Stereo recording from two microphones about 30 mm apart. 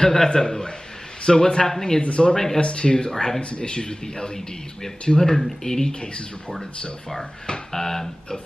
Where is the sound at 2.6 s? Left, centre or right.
Left.